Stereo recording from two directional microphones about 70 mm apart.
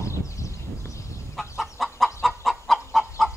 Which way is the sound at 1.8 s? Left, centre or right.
Centre.